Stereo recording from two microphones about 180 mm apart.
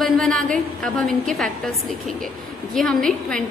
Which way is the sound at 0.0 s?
Centre (ahead or behind).